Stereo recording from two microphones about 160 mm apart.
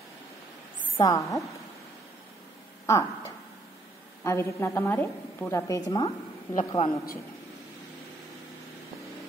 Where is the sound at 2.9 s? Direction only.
20° left (ahead or behind).